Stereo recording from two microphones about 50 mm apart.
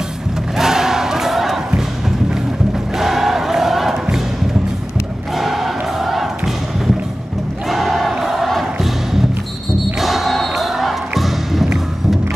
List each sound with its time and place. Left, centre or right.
0.6 s crowd: centre
1.7 s music: centre
3.0 s crowd: centre
5.3 s choir: centre
7.6 s choir: centre
8.7 s music: centre